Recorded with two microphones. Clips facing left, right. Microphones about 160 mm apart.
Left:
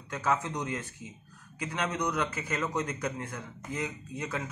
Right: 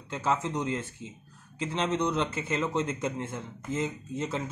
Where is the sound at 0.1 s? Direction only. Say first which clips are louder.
Right 1 dB; 25° right (ahead or behind).